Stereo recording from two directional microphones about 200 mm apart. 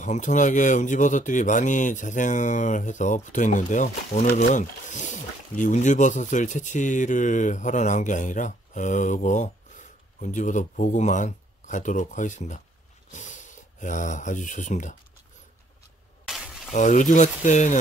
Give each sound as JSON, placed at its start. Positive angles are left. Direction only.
{"t": 0.0, "sound": "speech", "side_deg": 35}
{"t": 16.3, "sound": "sizzle", "side_deg": -5}
{"t": 16.7, "sound": "speech", "side_deg": 40}